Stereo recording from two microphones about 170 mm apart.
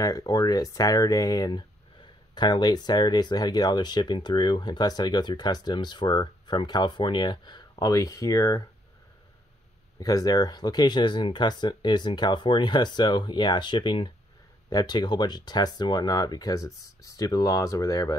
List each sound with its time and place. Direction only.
0.0 s speech: 20° left (ahead or behind)
9.9 s speech: 20° left (ahead or behind)